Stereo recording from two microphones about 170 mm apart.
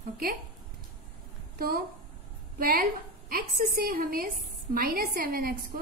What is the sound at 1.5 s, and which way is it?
A woman's voice, 60° right (ahead or behind).